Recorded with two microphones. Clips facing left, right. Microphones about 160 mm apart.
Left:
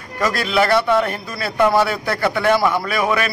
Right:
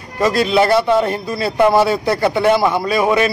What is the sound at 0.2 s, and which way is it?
A man's voice, 25° right (ahead or behind).